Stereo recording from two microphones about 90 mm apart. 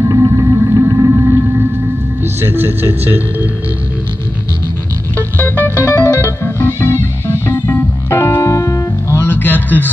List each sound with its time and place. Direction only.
0.1 s music: 40° right (ahead or behind)
2.4 s speech: 20° right (ahead or behind)
5.1 s music: 25° left (ahead or behind)